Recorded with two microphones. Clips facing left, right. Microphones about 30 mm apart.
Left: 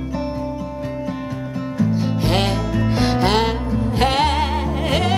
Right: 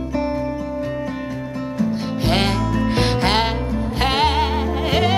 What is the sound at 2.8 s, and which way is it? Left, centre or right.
Music, right.